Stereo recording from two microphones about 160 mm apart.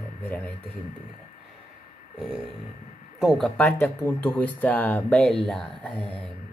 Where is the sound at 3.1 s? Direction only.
Centre (ahead or behind).